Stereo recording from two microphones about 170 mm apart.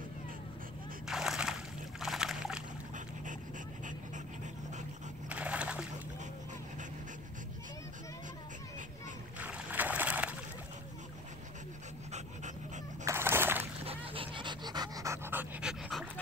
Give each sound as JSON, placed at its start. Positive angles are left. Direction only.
{"t": 1.0, "sound": "a sound", "side_deg": 0}
{"t": 3.3, "sound": "dog", "side_deg": -50}
{"t": 5.3, "sound": "a sound", "side_deg": -5}
{"t": 9.4, "sound": "boat", "side_deg": -10}
{"t": 13.0, "sound": "fowl", "side_deg": -15}
{"t": 13.8, "sound": "pant", "side_deg": -35}